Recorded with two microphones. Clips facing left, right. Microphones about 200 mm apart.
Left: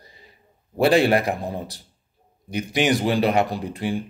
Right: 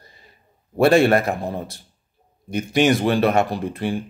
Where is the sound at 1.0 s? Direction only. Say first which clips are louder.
Right 2 dB; 10° left (ahead or behind).